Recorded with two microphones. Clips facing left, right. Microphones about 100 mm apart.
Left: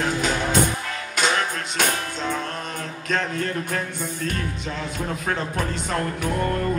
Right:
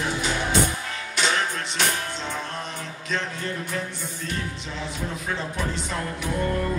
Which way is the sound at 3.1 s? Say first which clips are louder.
Left 4 dB; 50° left (ahead or behind).